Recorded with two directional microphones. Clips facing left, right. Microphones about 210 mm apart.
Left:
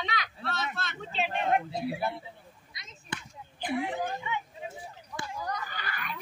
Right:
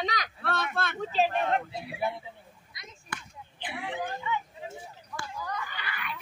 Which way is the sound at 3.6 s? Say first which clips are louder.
Left 6 dB; 40° left (ahead or behind).